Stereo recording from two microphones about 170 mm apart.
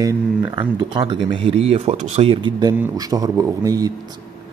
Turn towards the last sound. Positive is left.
turn(degrees=-20)  # may be behind; listen again after turning